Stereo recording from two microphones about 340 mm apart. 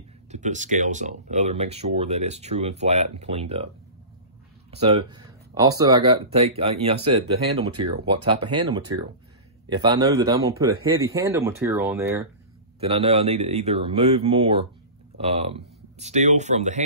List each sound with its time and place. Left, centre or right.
0.3 s speech: right